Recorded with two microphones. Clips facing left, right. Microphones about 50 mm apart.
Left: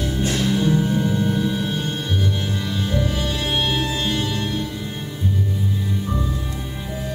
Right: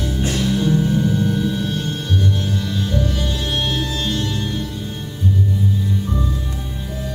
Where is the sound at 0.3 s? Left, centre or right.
Centre.